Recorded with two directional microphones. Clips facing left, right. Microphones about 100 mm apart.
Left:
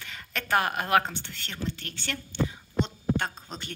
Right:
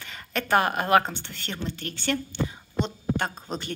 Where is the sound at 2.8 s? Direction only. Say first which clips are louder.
Right 1 dB; 10° right (ahead or behind).